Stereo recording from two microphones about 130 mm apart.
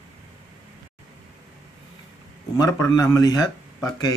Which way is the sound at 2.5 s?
25° left (ahead or behind).